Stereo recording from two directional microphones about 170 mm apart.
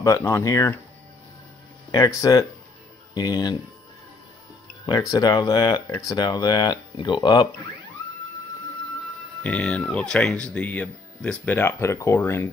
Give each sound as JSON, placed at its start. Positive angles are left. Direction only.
{"t": 0.0, "sound": "speech", "side_deg": 15}
{"t": 1.9, "sound": "speech", "side_deg": 20}
{"t": 4.8, "sound": "speech", "side_deg": 20}
{"t": 9.4, "sound": "speech", "side_deg": 5}